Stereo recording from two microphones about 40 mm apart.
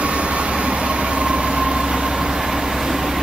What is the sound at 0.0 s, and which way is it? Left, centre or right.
Vehicle, right.